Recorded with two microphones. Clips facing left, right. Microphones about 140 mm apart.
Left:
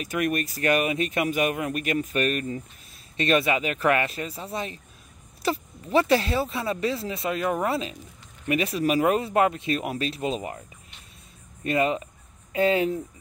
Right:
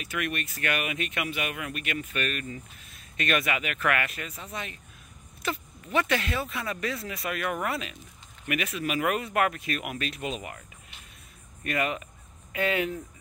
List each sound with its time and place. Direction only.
0.0 s speech: 40° left (ahead or behind)
11.6 s speech: 30° left (ahead or behind)